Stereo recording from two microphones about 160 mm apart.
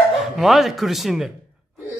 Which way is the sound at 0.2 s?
Centre (ahead or behind).